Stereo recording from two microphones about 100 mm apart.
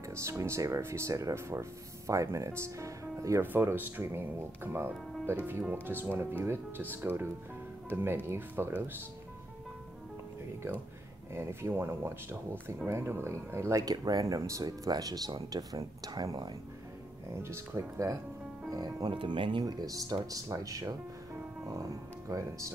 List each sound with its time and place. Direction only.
0.1 s speech: 30° right (ahead or behind)
11.3 s speech: 25° right (ahead or behind); by 16.5 s 40° right (ahead or behind)
17.3 s speech: 30° right (ahead or behind)
19.1 s speech: 55° right (ahead or behind); by 22.7 s 35° right (ahead or behind)